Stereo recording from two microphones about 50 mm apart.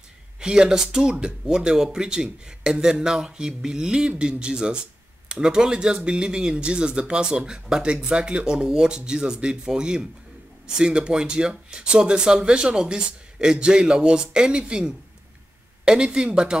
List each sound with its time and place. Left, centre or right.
0.4 s speech: centre